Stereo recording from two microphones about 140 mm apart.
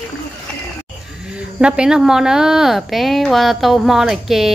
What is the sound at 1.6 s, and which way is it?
A woman's voice, 5° right (ahead or behind).